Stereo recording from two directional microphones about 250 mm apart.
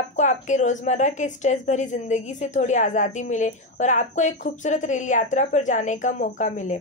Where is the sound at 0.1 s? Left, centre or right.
Left.